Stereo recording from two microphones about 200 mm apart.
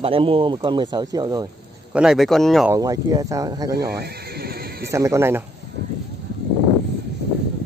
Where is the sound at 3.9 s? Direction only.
50° right (ahead or behind).